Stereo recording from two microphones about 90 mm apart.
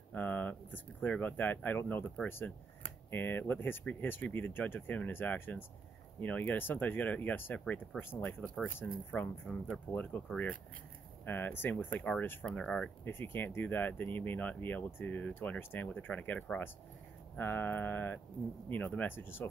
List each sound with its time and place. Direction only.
0.1 s speech: 20° left (ahead or behind)
11.2 s speech: 20° left (ahead or behind)
12.4 s speech: 10° left (ahead or behind)
13.0 s speech: 25° left (ahead or behind)